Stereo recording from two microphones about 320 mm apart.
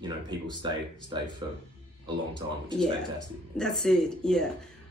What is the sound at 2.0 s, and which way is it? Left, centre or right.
Speech, centre.